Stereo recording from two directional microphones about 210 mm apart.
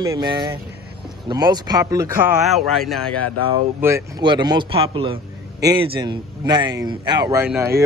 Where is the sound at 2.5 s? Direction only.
Centre (ahead or behind).